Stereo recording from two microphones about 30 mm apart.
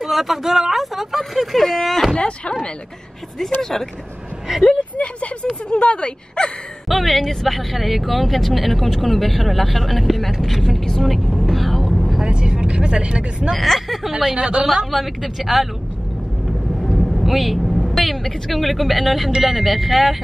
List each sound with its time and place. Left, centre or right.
0.0 s a sound: centre
2.1 s a sound: left
3.3 s speech: centre
4.5 s a woman's voice: centre
4.9 s speech: left
6.9 s speech: centre
11.5 s vehicle: centre
12.3 s speech: right
13.6 s speech: centre
14.1 s a woman's voice: right
14.9 s speech: centre
16.9 s speech: centre